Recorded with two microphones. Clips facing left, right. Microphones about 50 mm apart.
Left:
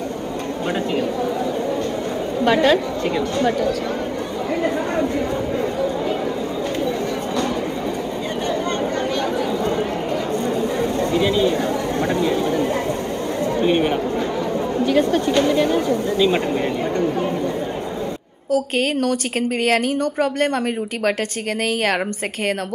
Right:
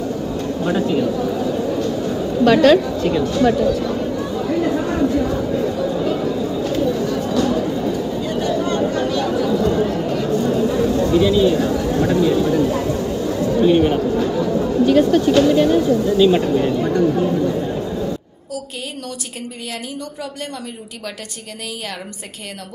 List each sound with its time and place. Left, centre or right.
2.4 s a woman's voice: left
4.6 s speech: left
9.4 s chatter: left
10.4 s a sound: left
13.6 s speech: left
18.5 s a woman's voice: left